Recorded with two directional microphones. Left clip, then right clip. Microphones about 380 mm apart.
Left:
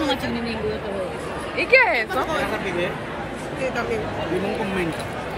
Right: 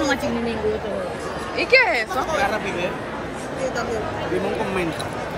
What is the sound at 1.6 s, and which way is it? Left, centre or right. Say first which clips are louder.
Speech: even; centre.